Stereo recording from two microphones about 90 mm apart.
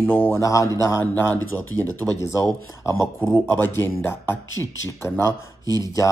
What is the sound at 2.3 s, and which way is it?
Speech, 35° left (ahead or behind).